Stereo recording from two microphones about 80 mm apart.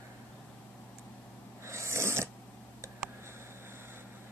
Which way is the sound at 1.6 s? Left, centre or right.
Right.